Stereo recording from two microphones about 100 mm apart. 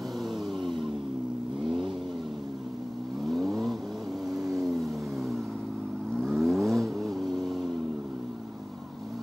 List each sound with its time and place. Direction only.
0.6 s vehicle: 50° right (ahead or behind)
3.3 s vehicle: centre (ahead or behind)
6.1 s vehicle: 5° left (ahead or behind)